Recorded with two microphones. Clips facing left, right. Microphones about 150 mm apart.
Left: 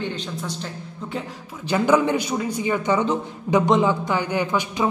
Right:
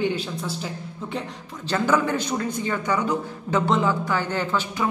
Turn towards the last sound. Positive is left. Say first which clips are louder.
# left 3 dB
turn(degrees=15)  # may be behind; listen again after turning